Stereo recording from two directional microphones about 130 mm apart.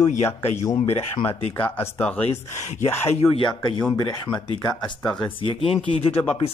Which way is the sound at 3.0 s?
55° left (ahead or behind).